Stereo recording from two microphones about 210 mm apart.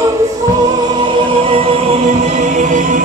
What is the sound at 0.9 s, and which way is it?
Music, 25° right (ahead or behind).